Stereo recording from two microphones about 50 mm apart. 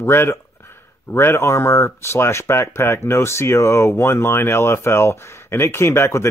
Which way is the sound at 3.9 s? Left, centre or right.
Left.